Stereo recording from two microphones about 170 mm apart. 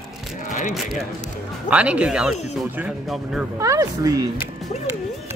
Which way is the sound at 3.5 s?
20° right (ahead or behind).